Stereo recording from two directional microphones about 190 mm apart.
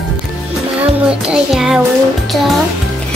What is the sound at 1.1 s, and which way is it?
A child's voice, 5° right (ahead or behind).